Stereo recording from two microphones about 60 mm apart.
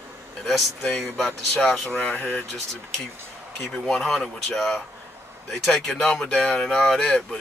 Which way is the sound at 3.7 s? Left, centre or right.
Centre.